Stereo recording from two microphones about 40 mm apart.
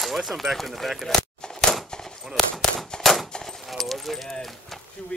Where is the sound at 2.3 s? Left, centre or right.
Centre.